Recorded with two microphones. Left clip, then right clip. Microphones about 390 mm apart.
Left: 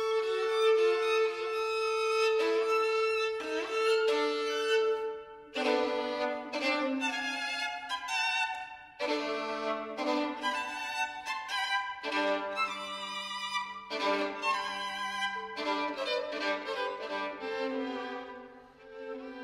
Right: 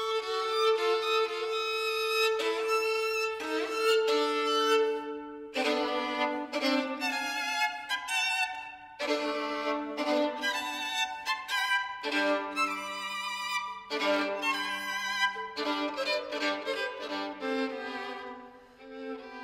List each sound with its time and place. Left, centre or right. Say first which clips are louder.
0.2 s violin: even; right
7.9 s music: right 2 dB; right
9.9 s violin: right 5 dB; right
11.2 s music: right 3 dB; right
13.5 s violin: right 2 dB; right